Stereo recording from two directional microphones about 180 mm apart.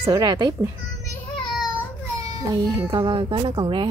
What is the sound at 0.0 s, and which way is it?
Speech, 20° right (ahead or behind).